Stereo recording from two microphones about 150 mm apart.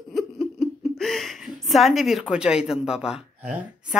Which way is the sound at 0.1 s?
Centre (ahead or behind).